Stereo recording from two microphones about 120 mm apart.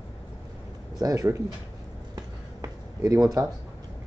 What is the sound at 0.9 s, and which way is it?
Speech, 30° right (ahead or behind).